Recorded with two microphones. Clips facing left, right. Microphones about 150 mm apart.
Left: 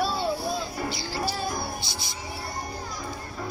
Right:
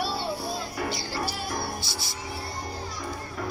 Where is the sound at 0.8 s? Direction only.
60° right (ahead or behind).